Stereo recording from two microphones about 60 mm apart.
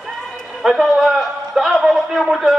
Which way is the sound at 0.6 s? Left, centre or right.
Centre.